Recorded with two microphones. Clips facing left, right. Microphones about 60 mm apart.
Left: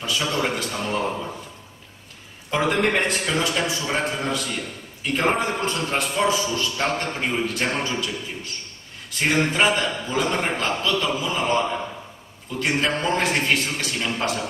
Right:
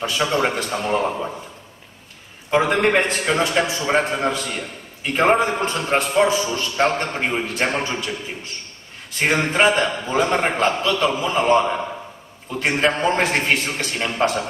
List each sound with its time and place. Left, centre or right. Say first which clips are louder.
0.0 s a man's voice: right 4 dB; right
2.6 s a man's voice: right 1 dB; right
9.2 s a man's voice: right 3 dB; right